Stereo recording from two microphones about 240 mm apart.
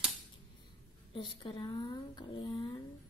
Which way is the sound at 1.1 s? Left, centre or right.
Centre.